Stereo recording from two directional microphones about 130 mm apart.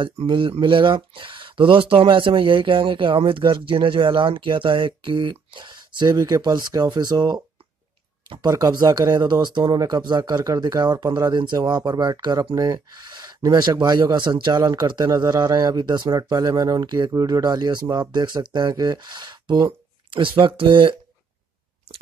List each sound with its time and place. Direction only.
0.0 s speech: 40° right (ahead or behind)